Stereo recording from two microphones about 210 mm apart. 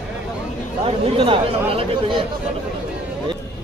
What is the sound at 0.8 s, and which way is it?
Speech, 25° right (ahead or behind).